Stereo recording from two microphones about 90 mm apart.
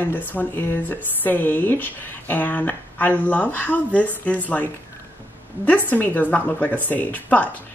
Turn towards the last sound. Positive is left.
turn(degrees=15)  # may be behind; listen again after turning